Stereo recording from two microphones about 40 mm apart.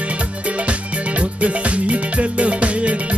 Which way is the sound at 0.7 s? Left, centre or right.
Right.